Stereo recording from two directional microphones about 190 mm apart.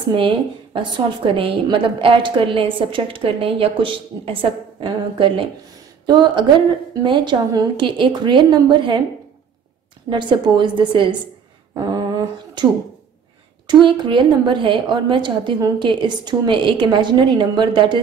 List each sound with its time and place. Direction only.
0.7 s a woman's voice: 25° right (ahead or behind)
10.0 s a woman's voice: 25° right (ahead or behind)
11.7 s a sound: 20° right (ahead or behind)
13.7 s a woman's voice: 25° right (ahead or behind)